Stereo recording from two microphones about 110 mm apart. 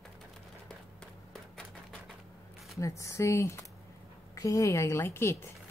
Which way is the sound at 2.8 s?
25° left (ahead or behind).